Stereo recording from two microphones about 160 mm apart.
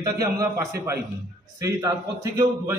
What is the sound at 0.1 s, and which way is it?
A man's voice, 20° right (ahead or behind).